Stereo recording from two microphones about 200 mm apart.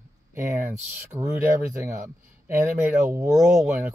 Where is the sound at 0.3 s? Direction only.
10° right (ahead or behind).